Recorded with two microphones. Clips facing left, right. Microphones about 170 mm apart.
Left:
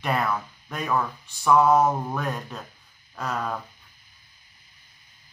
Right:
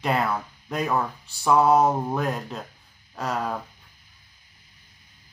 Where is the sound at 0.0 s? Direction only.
25° right (ahead or behind).